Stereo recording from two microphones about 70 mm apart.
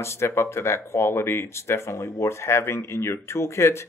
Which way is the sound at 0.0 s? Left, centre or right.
Left.